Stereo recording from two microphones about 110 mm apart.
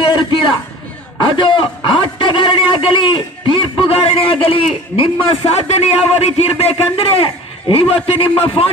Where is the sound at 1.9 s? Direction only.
50° left (ahead or behind).